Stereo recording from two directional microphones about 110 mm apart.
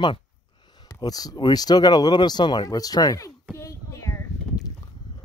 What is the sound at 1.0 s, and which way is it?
Speech, 35° left (ahead or behind).